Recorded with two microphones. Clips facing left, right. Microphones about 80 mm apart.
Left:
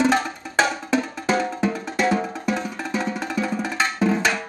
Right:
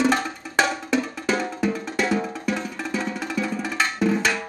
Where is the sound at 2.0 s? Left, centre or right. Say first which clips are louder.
Left 3 dB; left.